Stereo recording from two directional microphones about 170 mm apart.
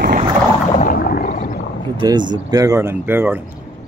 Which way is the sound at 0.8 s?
55° left (ahead or behind).